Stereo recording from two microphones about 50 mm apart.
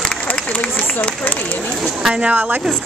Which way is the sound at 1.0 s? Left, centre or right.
Left.